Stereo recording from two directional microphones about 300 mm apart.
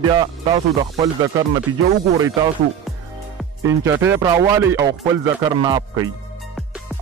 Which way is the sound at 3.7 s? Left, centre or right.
Centre.